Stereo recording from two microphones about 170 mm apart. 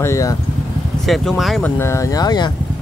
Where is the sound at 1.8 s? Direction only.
15° left (ahead or behind).